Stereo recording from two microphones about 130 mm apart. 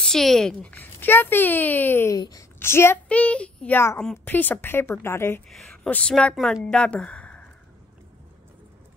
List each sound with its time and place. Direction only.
0.0 s speech: 5° left (ahead or behind)
2.1 s speech: 30° left (ahead or behind)
2.6 s speech: 20° left (ahead or behind)
5.5 s speech: centre (ahead or behind)
6.3 s a woman's voice: centre (ahead or behind)
6.6 s speech: 10° left (ahead or behind)